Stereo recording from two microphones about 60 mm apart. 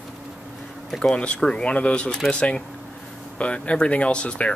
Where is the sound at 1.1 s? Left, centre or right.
Centre.